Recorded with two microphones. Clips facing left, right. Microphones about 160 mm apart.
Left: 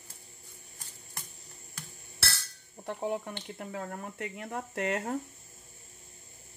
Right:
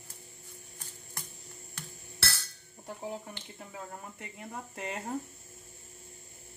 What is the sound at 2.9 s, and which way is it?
Speech, 70° left (ahead or behind).